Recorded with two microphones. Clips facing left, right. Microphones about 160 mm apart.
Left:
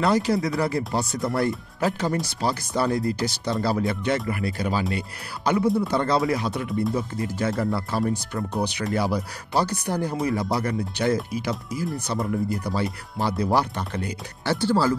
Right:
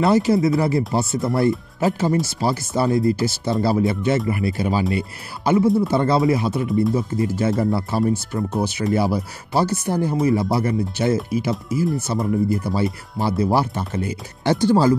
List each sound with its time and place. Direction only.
0.3 s speech: 5° right (ahead or behind)